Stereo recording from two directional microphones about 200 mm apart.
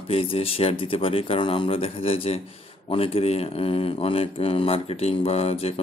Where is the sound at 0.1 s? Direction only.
30° left (ahead or behind).